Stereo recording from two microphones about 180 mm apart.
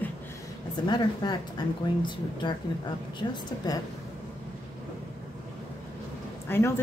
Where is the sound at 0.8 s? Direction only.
25° left (ahead or behind).